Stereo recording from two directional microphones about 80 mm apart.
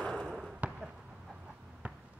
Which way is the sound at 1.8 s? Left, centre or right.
Centre.